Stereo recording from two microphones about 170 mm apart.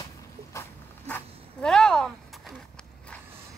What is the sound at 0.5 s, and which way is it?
Zipper, 10° left (ahead or behind).